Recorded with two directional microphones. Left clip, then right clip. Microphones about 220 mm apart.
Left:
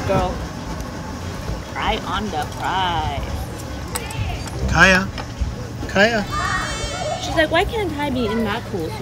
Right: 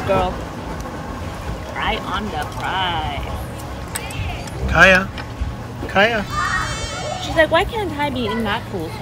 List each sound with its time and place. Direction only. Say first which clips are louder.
1.8 s speech: even; 5° left (ahead or behind)
4.6 s speech: right 2 dB; 5° left (ahead or behind)